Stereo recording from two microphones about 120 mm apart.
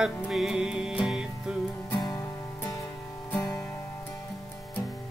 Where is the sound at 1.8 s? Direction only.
30° left (ahead or behind).